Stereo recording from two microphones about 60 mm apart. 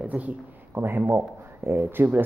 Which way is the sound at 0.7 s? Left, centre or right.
Right.